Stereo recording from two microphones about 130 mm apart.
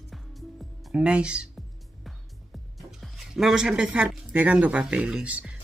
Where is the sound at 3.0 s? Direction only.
Centre (ahead or behind).